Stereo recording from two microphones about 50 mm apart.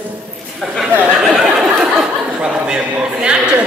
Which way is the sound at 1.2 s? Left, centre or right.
Centre.